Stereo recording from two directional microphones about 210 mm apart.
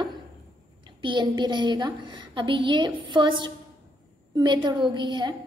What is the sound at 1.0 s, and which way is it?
A woman's voice, 20° right (ahead or behind).